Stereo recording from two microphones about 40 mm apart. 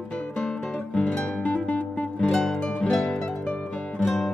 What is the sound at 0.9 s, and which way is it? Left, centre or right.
Music, left.